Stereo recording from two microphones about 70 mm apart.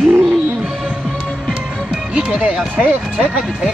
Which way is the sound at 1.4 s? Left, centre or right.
Centre.